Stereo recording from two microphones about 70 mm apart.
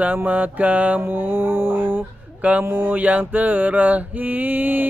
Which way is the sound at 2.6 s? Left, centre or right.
Right.